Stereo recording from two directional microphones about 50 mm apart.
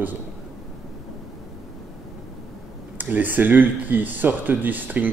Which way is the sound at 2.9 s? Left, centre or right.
Right.